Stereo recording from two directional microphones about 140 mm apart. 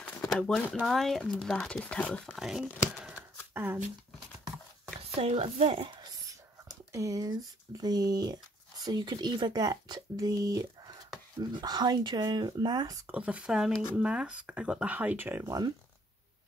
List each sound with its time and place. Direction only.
0.3 s speech: 5° left (ahead or behind)
3.5 s speech: 15° right (ahead or behind)
5.2 s speech: 45° right (ahead or behind)
6.7 s speech: 25° right (ahead or behind)
13.0 s speech: 10° right (ahead or behind)